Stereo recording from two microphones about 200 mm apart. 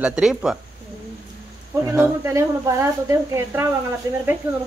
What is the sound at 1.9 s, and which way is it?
Speech, 10° right (ahead or behind).